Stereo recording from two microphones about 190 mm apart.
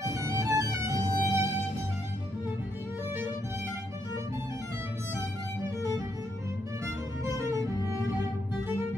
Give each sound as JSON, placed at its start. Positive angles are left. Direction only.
{"t": 0.4, "sound": "music", "side_deg": -15}
{"t": 7.2, "sound": "music", "side_deg": -15}